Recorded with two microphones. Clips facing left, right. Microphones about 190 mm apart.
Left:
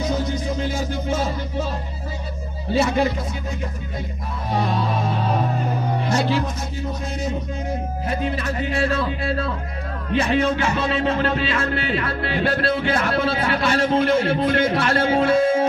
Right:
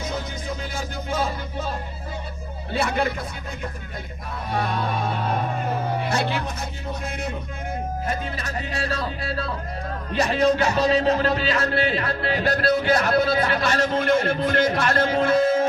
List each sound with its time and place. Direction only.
2.7 s speech: 55° right (ahead or behind)
6.0 s speech: 60° right (ahead or behind)
8.1 s music: 40° right (ahead or behind)
14.7 s speech: 45° right (ahead or behind)